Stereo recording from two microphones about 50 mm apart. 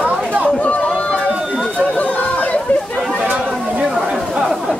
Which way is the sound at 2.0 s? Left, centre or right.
Left.